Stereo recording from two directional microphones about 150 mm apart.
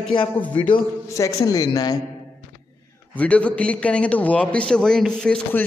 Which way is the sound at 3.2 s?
10° left (ahead or behind).